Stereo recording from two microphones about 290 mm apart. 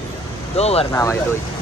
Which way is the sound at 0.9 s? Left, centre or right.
Centre.